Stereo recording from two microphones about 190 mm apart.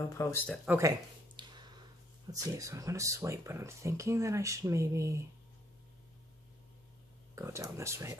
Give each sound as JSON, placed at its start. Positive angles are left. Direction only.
{"t": 0.0, "sound": "speech", "side_deg": 15}
{"t": 0.7, "sound": "a sound", "side_deg": -15}
{"t": 2.5, "sound": "speech", "side_deg": -15}
{"t": 7.3, "sound": "speech", "side_deg": -15}